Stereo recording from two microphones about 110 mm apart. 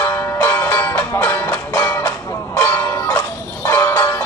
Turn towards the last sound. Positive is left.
turn(degrees=30)  # may be behind; listen again after turning